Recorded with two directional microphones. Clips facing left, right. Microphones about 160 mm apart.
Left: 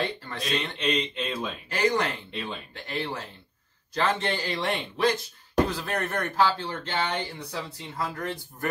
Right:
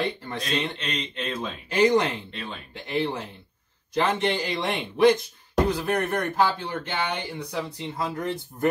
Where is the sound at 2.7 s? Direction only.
20° right (ahead or behind).